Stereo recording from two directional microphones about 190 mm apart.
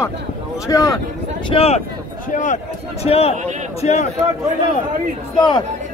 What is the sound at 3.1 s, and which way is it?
A man's voice, 30° left (ahead or behind).